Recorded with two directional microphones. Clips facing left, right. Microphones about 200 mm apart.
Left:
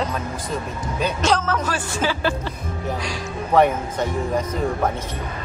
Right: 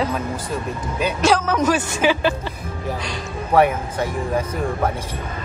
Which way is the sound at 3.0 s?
5° right (ahead or behind).